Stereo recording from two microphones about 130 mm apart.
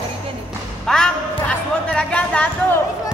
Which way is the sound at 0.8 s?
5° left (ahead or behind).